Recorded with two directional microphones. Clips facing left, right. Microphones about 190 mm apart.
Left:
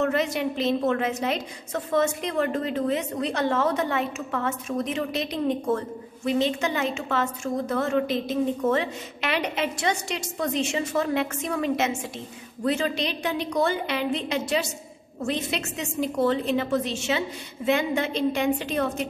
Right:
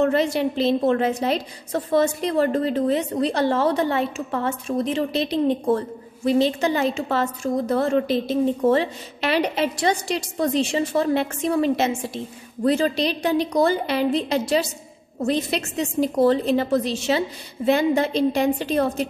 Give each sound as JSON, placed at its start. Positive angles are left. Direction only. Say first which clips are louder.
{"t": 0.0, "sound": "a woman's voice", "louder": "right 5 dB", "side_deg": -30}